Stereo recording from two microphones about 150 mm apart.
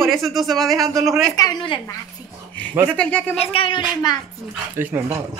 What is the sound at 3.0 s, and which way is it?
Speech, 5° left (ahead or behind).